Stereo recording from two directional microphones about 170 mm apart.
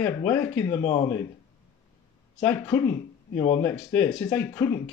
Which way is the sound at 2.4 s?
15° left (ahead or behind).